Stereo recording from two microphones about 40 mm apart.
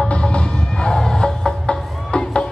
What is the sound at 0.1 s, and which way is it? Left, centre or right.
Music, left.